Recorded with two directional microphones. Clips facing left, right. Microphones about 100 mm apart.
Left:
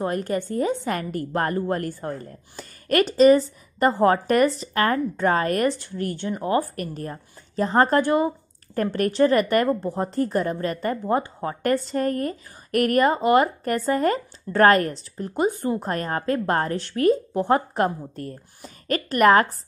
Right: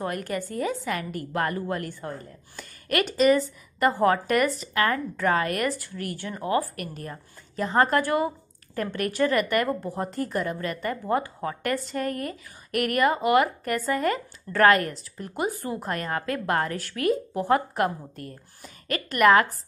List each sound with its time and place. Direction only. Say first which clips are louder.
0.0 s a woman's voice: left 5 dB; 30° left (ahead or behind)
8.9 s a woman's voice: left 5 dB; 35° left (ahead or behind)